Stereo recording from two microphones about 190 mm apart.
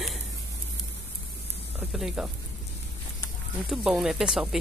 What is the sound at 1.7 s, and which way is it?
Speech, 5° right (ahead or behind).